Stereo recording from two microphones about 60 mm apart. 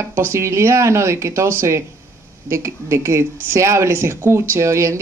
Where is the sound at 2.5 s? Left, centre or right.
Right.